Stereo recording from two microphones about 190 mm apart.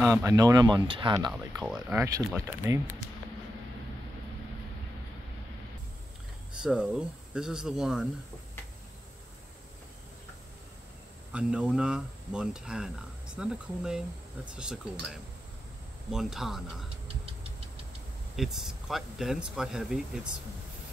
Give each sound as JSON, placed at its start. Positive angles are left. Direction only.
{"t": 0.0, "sound": "speech", "side_deg": -15}
{"t": 1.6, "sound": "speech", "side_deg": -5}
{"t": 2.0, "sound": "speech", "side_deg": -15}
{"t": 6.6, "sound": "speech", "side_deg": -5}
{"t": 11.3, "sound": "speech", "side_deg": -5}
{"t": 18.3, "sound": "speech", "side_deg": 0}